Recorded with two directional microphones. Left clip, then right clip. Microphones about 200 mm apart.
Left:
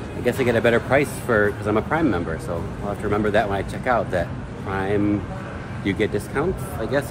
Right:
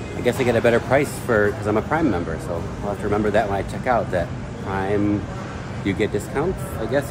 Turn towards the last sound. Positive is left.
turn(degrees=0)  # may be behind; listen again after turning